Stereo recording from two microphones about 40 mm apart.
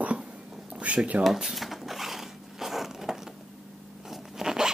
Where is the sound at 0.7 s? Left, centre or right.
Right.